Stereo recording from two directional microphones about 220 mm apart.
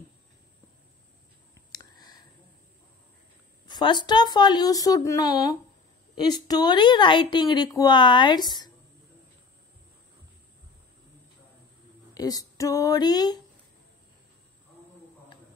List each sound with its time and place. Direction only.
1.7 s a sound: 15° left (ahead or behind)
3.6 s speech: 20° left (ahead or behind)
12.1 s speech: 15° left (ahead or behind)